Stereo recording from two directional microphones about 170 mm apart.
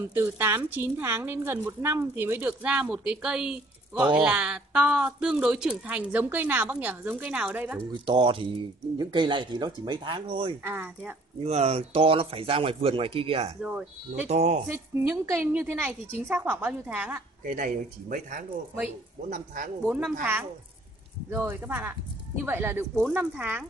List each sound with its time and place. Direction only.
0.1 s a woman's voice: 15° right (ahead or behind)
7.9 s speech: 25° right (ahead or behind)
10.6 s a woman's voice: 10° right (ahead or behind)
11.4 s speech: 40° right (ahead or behind)
13.6 s a woman's voice: 5° right (ahead or behind)
14.3 s speech: 40° right (ahead or behind)
14.7 s a woman's voice: 15° right (ahead or behind)
17.5 s speech: 50° right (ahead or behind)
19.9 s a woman's voice: 10° right (ahead or behind)